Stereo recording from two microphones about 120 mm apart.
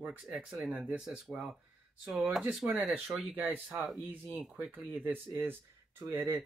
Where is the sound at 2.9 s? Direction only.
15° right (ahead or behind).